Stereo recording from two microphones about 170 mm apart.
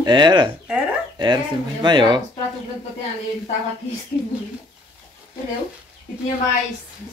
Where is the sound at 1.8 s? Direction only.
25° right (ahead or behind).